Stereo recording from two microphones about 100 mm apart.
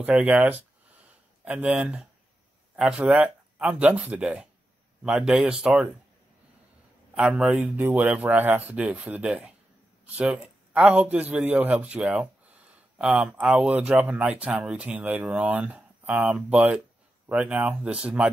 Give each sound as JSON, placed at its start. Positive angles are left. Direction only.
{"t": 0.0, "sound": "speech", "side_deg": -15}
{"t": 7.2, "sound": "speech", "side_deg": -5}
{"t": 7.7, "sound": "speech", "side_deg": -15}